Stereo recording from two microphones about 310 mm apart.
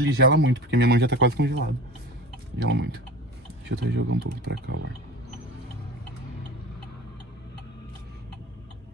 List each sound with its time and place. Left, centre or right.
0.0 s speech: right